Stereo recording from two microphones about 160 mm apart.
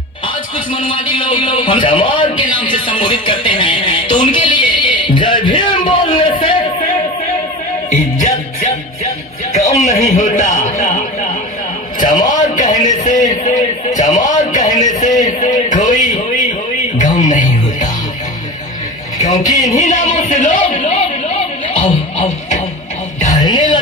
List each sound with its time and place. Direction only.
0.7 s a man's voice: 30° left (ahead or behind)
7.9 s music: 50° left (ahead or behind)
9.8 s speech: 50° left (ahead or behind)
17.0 s music: 50° left (ahead or behind)
19.6 s a sound: 50° left (ahead or behind)
23.4 s music: 25° left (ahead or behind)